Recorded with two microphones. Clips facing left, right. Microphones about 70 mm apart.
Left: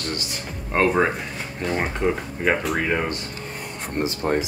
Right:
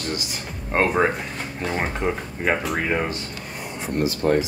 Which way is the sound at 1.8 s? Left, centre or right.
Centre.